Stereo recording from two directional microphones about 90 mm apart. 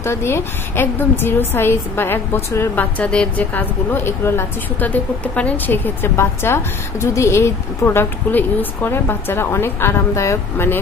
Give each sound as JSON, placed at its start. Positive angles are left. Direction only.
{"t": 0.0, "sound": "a woman's voice", "side_deg": 30}
{"t": 2.7, "sound": "a woman's voice", "side_deg": 15}